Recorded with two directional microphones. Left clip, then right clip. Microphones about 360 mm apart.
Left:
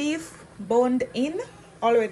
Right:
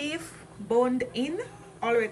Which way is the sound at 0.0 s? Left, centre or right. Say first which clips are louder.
Left 5 dB; centre.